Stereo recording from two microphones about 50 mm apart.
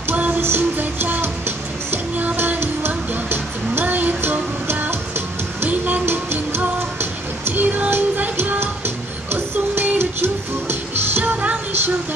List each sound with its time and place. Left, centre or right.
0.1 s music: right
0.4 s music: right
2.3 s music: right
8.5 s music: right